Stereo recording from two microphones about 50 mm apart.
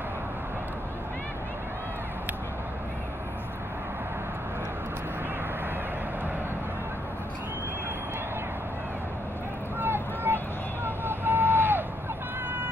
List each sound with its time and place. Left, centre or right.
9.8 s vehicle: right